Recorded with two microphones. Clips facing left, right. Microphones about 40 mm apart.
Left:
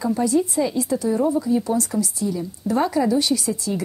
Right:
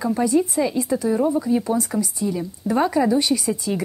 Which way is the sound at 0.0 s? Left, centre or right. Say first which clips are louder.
Right 1 dB; centre.